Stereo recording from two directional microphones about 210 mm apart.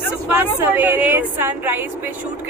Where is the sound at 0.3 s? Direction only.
10° right (ahead or behind).